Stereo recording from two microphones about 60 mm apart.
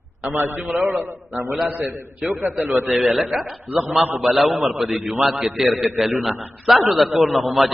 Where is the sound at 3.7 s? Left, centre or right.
Right.